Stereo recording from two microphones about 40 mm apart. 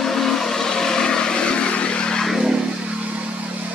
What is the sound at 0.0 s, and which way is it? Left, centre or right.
Vehicle, centre.